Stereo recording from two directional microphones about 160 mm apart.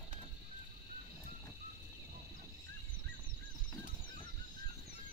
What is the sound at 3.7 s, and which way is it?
Goose, 30° left (ahead or behind).